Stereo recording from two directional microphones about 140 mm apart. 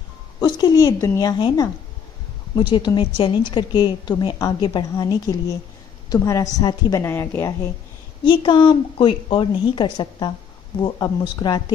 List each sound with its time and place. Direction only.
0.4 s a woman's voice: 30° left (ahead or behind)
7.0 s a woman's voice: 20° left (ahead or behind)
8.2 s a woman's voice: 35° left (ahead or behind)